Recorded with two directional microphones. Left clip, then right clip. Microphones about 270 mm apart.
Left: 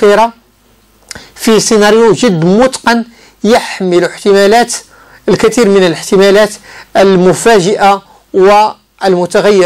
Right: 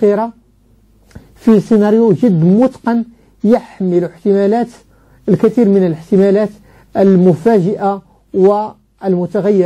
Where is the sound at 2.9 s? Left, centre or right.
Left.